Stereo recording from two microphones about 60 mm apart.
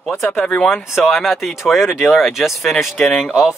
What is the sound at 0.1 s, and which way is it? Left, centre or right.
Speech, left.